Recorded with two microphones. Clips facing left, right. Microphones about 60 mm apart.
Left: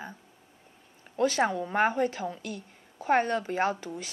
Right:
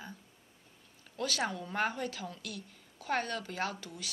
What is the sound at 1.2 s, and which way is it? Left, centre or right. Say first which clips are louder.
A woman's voice: left 9 dB; left.